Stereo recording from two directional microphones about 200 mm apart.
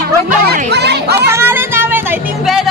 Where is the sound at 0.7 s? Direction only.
55° right (ahead or behind).